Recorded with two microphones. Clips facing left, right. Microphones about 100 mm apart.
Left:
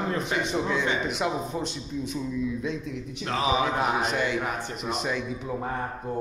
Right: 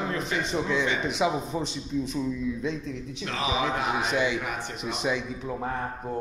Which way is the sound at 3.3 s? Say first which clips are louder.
Left 3 dB; 40° left (ahead or behind).